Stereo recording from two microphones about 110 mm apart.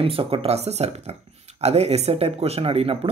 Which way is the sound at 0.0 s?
55° right (ahead or behind).